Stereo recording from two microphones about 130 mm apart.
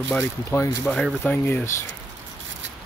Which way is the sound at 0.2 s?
20° left (ahead or behind).